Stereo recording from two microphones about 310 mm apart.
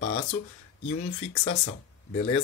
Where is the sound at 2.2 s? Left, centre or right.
Centre.